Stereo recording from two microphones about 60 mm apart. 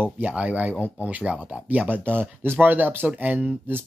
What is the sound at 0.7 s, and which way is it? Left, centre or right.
Speech, left.